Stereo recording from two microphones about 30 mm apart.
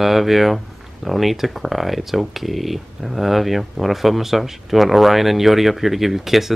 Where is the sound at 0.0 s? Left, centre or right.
Centre.